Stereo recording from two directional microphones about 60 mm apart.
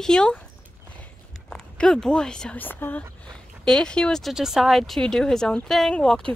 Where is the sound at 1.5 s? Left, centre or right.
Centre.